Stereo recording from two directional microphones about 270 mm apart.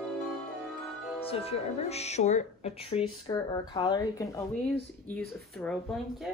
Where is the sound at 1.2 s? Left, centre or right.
Left; by 5.7 s centre.